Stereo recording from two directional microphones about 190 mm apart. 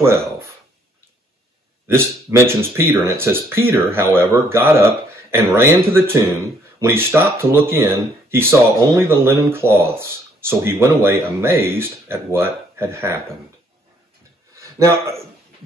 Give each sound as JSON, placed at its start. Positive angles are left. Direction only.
{"t": 1.9, "sound": "speech", "side_deg": -10}
{"t": 14.6, "sound": "a man's voice", "side_deg": -15}